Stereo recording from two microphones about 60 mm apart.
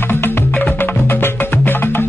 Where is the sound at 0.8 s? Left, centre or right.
Left.